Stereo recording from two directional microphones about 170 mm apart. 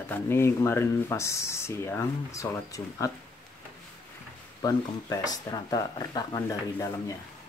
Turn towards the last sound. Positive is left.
turn(degrees=20)  # may be behind; listen again after turning